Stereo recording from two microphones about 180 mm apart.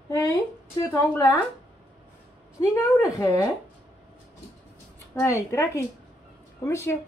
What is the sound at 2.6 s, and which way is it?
Speech, 15° left (ahead or behind).